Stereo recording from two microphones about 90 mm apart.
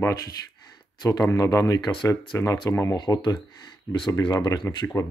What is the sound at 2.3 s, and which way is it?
Speech, 30° left (ahead or behind).